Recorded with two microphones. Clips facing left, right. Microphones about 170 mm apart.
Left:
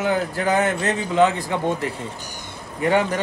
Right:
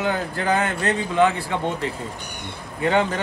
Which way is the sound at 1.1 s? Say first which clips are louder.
Left 2 dB; 20° left (ahead or behind).